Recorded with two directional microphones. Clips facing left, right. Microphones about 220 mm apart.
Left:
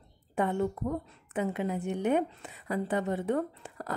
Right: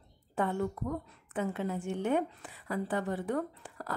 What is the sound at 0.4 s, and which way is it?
A woman's voice, 20° left (ahead or behind).